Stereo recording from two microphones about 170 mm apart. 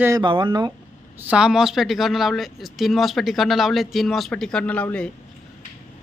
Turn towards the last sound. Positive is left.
turn(degrees=10)  # may be behind; listen again after turning